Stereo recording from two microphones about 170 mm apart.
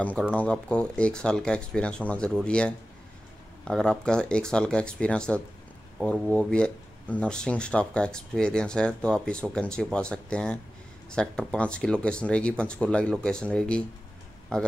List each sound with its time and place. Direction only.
0.0 s speech: 5° left (ahead or behind)